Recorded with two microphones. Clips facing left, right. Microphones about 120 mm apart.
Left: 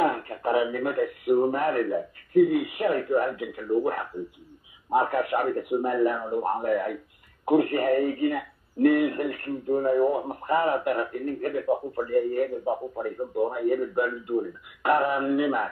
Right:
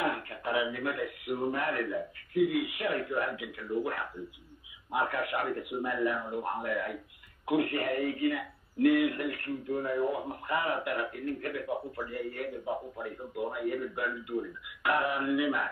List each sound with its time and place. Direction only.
0.0 s speech: 40° left (ahead or behind)
5.1 s speech: 40° left (ahead or behind)